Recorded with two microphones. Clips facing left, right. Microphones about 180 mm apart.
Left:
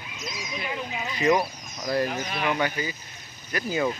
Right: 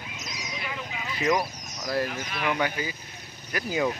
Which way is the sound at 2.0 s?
25° left (ahead or behind).